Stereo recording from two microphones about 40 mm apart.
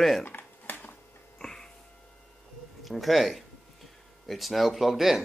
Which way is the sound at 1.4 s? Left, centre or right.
Centre.